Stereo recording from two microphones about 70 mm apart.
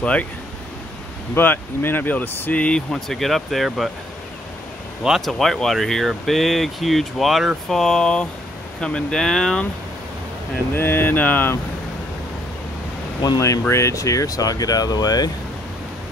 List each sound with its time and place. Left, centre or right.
0.0 s speech: centre
1.3 s speech: left
2.6 s speech: centre
5.0 s speech: centre
10.7 s speech: left
13.4 s speech: left